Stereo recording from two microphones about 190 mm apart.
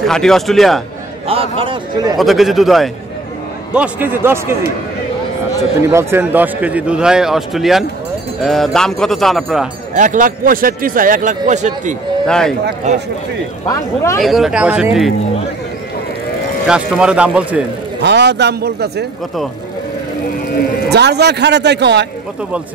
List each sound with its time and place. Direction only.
0.0 s a man's voice: centre (ahead or behind)
1.2 s a man's voice: 30° right (ahead or behind)
2.1 s a man's voice: centre (ahead or behind)
5.9 s a man's voice: 15° right (ahead or behind)
9.9 s speech: 40° right (ahead or behind)
12.3 s a man's voice: 5° left (ahead or behind)
12.9 s speech: 35° right (ahead or behind)
13.7 s speech: 15° left (ahead or behind)
14.2 s a man's voice: centre (ahead or behind)
16.6 s a man's voice: 5° right (ahead or behind)
18.0 s speech: 65° right (ahead or behind)
20.9 s speech: 60° right (ahead or behind)